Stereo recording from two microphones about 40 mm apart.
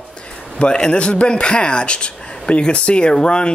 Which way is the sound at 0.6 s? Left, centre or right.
Left.